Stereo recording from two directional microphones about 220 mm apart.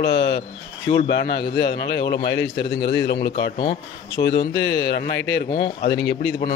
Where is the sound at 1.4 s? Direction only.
45° left (ahead or behind).